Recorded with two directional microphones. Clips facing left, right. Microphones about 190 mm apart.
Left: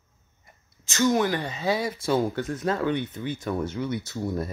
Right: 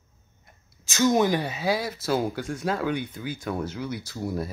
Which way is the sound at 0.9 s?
15° right (ahead or behind).